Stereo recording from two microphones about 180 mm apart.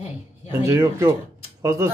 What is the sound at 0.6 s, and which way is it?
Singing, 15° right (ahead or behind).